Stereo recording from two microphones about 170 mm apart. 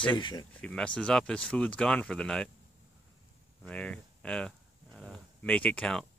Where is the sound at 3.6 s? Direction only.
5° left (ahead or behind).